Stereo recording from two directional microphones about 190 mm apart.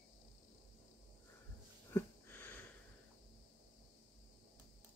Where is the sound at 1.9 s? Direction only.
10° left (ahead or behind).